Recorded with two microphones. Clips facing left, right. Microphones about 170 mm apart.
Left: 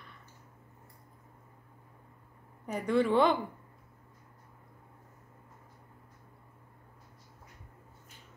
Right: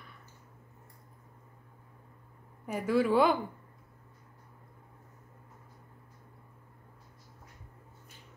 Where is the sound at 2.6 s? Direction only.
5° right (ahead or behind).